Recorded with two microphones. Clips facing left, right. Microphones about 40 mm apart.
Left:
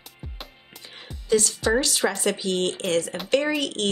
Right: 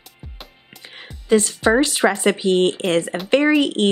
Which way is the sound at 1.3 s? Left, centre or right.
Right.